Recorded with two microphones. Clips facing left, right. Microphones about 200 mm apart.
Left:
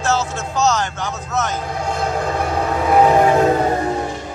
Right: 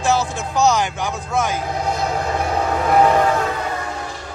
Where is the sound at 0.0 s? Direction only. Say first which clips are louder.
Right 1 dB; 15° right (ahead or behind).